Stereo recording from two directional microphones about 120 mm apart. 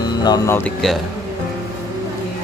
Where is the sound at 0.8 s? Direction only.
5° left (ahead or behind).